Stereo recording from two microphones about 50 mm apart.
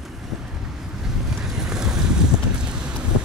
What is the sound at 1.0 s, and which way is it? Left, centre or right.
Boat, centre.